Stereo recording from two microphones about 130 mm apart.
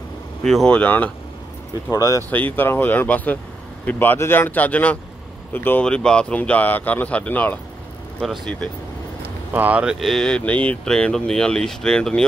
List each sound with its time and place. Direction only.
0.5 s speech: 5° left (ahead or behind)
1.9 s speech: 25° left (ahead or behind)
2.3 s speech: 15° left (ahead or behind)
9.5 s speech: 10° right (ahead or behind); by 12.3 s 5° left (ahead or behind)